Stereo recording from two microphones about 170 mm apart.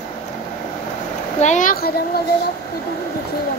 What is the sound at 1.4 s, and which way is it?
Speech, 45° left (ahead or behind).